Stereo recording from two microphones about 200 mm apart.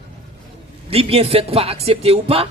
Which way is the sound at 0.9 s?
30° right (ahead or behind).